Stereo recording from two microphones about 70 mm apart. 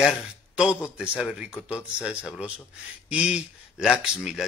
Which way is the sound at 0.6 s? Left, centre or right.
Centre.